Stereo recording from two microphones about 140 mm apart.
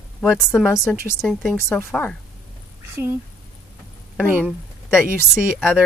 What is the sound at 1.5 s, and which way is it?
Speech, 15° left (ahead or behind).